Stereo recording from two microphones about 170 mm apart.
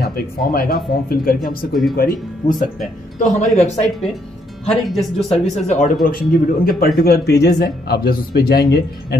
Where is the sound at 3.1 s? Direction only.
40° left (ahead or behind).